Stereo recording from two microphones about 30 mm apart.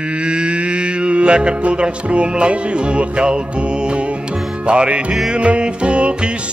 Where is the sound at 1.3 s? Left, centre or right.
Right.